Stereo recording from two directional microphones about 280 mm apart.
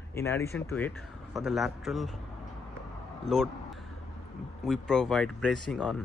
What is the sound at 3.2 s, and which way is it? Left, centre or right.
Speech, centre.